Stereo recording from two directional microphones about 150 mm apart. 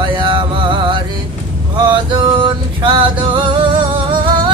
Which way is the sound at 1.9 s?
35° right (ahead or behind).